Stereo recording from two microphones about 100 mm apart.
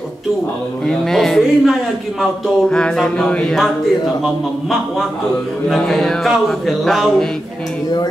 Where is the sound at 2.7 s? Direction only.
10° left (ahead or behind).